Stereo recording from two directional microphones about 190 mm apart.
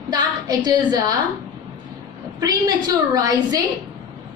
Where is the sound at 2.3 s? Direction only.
20° right (ahead or behind).